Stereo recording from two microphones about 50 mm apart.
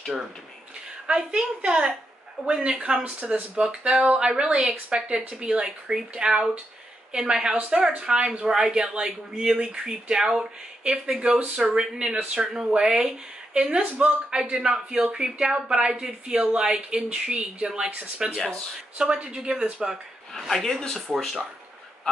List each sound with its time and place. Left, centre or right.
1.0 s speech: centre
3.0 s speech: right
3.8 s speech: centre
11.7 s speech: centre
18.3 s a man's voice: centre
18.9 s speech: right
19.8 s a man's voice: centre
20.3 s a man's voice: centre